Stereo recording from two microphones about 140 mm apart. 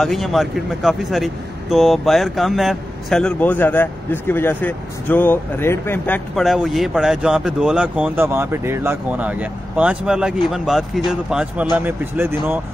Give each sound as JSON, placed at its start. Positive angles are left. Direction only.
{"t": 0.0, "sound": "speech", "side_deg": 0}
{"t": 6.3, "sound": "speech", "side_deg": 0}